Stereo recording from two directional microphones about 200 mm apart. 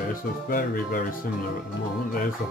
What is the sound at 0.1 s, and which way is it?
Speech, 45° left (ahead or behind).